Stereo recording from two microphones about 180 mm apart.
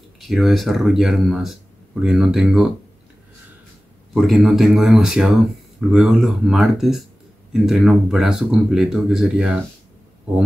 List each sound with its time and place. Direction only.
0.2 s speech: centre (ahead or behind)
4.1 s speech: centre (ahead or behind)